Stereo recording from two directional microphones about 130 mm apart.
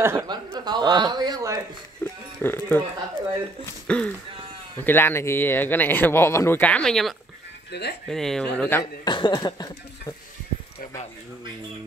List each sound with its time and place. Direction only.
0.0 s speech: 20° right (ahead or behind)
0.3 s speech: 35° right (ahead or behind)
2.0 s a sound: 15° left (ahead or behind)
2.4 s speech: 15° left (ahead or behind)
3.8 s speech: 5° left (ahead or behind)
9.0 s speech: 35° left (ahead or behind)